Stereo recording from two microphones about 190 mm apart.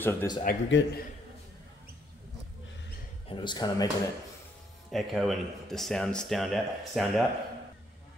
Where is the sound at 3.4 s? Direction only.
20° left (ahead or behind).